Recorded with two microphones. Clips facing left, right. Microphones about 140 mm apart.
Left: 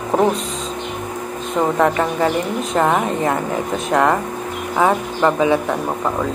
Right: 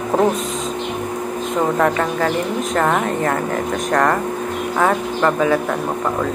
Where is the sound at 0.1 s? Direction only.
10° left (ahead or behind).